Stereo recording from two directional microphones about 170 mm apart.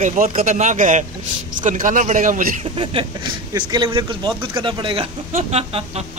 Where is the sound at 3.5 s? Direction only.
25° right (ahead or behind).